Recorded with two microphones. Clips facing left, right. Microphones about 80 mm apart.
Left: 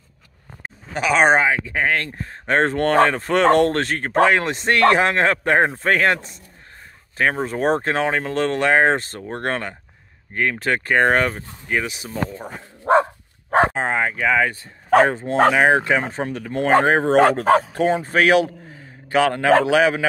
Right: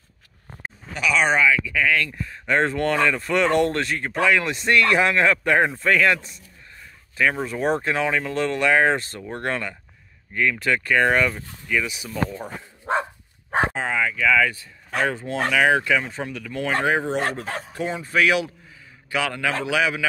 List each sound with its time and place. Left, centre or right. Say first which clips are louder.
0.9 s speech: left 4 dB; left
3.8 s speech: left 5 dB; left
9.3 s speech: left 2 dB; left
13.5 s speech: left 5 dB; left
17.1 s speech: left 12 dB; left